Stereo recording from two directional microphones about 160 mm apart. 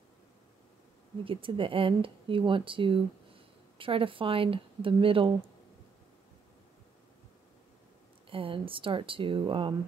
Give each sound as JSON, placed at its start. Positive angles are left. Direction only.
{"t": 1.2, "sound": "speech", "side_deg": -35}
{"t": 8.3, "sound": "speech", "side_deg": -35}